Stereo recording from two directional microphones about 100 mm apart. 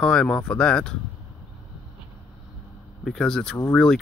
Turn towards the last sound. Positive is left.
turn(degrees=5)  # may be behind; listen again after turning